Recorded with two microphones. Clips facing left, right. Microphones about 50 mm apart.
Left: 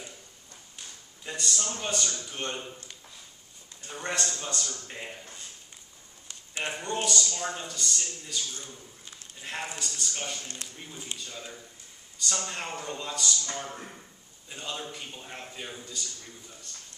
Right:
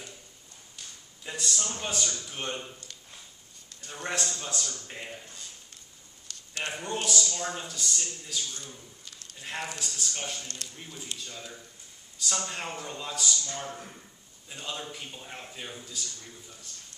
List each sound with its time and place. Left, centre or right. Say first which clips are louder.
1.2 s a man's voice: left 1 dB; centre
3.9 s speech: left 1 dB; centre
6.3 s a sound: right 1 dB; left
6.6 s speech: left 2 dB; centre
13.7 s speech: left 1 dB; centre
14.5 s speech: left 1 dB; centre